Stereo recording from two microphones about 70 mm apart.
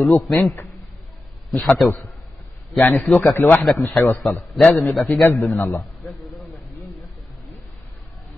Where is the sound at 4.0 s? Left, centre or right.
Left.